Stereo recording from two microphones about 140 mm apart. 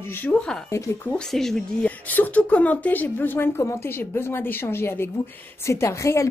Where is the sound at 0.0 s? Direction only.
15° left (ahead or behind).